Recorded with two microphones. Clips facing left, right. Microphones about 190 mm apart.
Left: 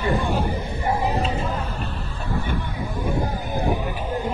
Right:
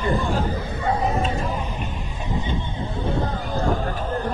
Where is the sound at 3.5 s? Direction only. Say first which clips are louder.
Right 1 dB; 15° left (ahead or behind).